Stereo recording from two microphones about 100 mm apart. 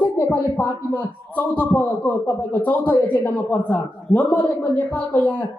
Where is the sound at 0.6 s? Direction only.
15° left (ahead or behind).